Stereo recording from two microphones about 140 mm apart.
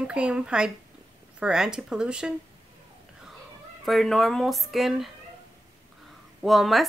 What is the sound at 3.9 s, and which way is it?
Speech, centre (ahead or behind).